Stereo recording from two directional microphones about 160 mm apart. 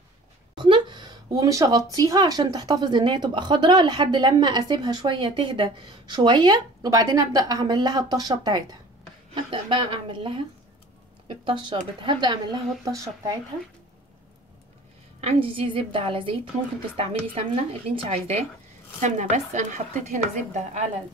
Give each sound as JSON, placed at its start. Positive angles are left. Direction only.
{"t": 0.6, "sound": "a woman's voice", "side_deg": -30}
{"t": 15.1, "sound": "a woman's voice", "side_deg": -35}